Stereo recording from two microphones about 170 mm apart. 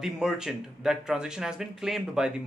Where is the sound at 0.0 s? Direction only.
5° right (ahead or behind).